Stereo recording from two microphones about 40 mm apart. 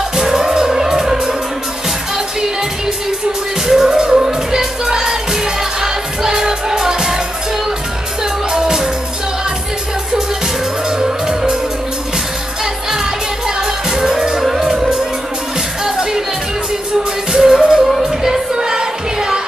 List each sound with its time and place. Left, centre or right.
0.1 s music: centre
3.6 s music: centre
8.2 s music: centre
11.0 s music: centre
13.6 s music: centre
17.3 s music: centre
17.7 s music: centre
18.5 s music: centre